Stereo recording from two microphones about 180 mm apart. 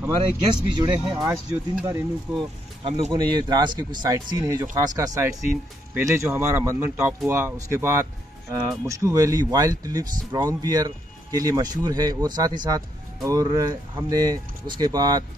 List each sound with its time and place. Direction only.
0.2 s speech: 30° right (ahead or behind)
1.1 s speech: 15° right (ahead or behind)
2.8 s speech: 35° right (ahead or behind)
3.1 s speech: 25° right (ahead or behind)